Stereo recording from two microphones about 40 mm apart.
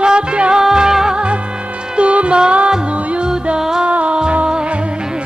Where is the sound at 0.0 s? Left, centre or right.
Right.